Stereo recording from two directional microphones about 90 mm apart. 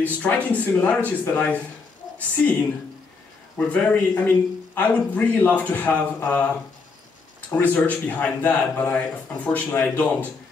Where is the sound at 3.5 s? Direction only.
15° left (ahead or behind).